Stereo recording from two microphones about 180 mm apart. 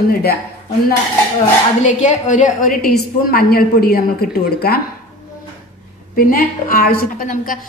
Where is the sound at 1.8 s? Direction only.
40° left (ahead or behind).